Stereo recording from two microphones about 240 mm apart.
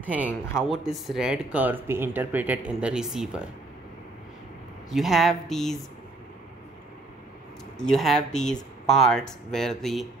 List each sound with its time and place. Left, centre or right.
0.0 s speech: centre
4.9 s speech: centre
7.8 s speech: centre